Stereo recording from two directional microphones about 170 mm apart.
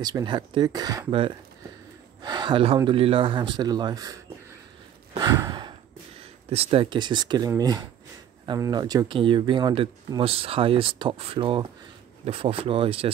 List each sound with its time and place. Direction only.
0.0 s speech: 25° right (ahead or behind)
2.2 s speech: 25° right (ahead or behind)
5.2 s sigh: 20° right (ahead or behind)
6.5 s speech: 35° right (ahead or behind)